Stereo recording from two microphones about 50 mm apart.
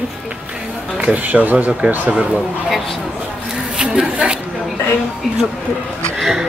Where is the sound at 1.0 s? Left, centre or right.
Right.